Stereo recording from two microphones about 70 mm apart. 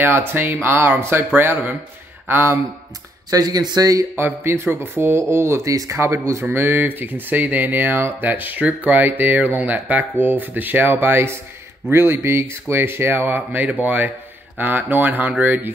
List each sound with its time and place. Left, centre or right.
0.0 s speech: right
3.3 s speech: right
4.2 s speech: right
5.7 s speech: right